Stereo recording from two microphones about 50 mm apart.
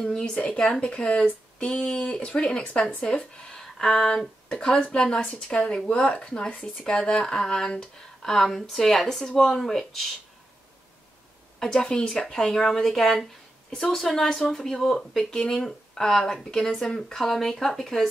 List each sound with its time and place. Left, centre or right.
0.1 s speech: centre
11.6 s speech: centre